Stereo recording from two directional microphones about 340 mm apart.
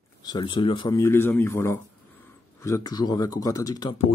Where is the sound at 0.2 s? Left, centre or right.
Centre.